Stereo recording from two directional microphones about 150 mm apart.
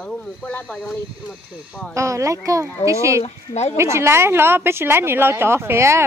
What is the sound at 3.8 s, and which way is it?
A woman's voice, 20° right (ahead or behind).